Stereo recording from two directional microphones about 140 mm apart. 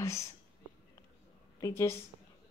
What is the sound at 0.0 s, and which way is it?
Speech, 20° left (ahead or behind).